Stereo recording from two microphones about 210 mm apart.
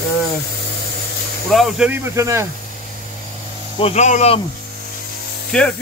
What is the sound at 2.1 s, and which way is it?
Speech, 15° right (ahead or behind).